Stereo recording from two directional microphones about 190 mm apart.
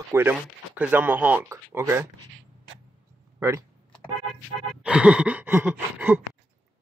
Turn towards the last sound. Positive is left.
turn(degrees=-10)  # may be behind; listen again after turning